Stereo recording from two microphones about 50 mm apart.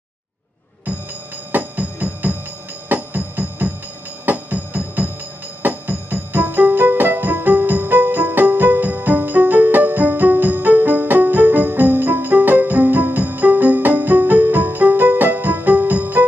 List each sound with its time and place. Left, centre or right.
1.5 s music: right